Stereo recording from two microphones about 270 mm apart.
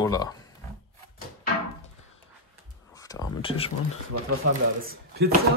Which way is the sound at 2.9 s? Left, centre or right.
Centre.